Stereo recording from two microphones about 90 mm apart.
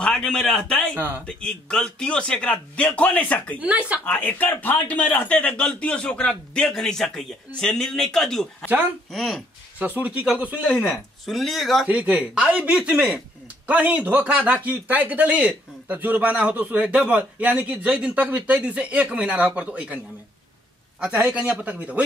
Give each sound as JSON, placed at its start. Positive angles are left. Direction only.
{"t": 0.0, "sound": "a man's voice", "side_deg": 10}
{"t": 0.9, "sound": "speech", "side_deg": -20}
{"t": 1.2, "sound": "a man's voice", "side_deg": 10}
{"t": 3.6, "sound": "speech", "side_deg": -15}
{"t": 4.0, "sound": "a man's voice", "side_deg": 20}
{"t": 9.8, "sound": "speech", "side_deg": -20}
{"t": 11.2, "sound": "speech", "side_deg": 0}
{"t": 11.9, "sound": "speech", "side_deg": -15}
{"t": 21.0, "sound": "speech", "side_deg": -10}